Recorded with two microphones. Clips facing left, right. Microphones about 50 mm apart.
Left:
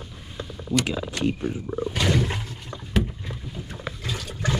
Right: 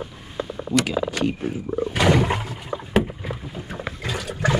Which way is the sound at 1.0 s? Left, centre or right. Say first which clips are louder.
Right 2 dB; centre.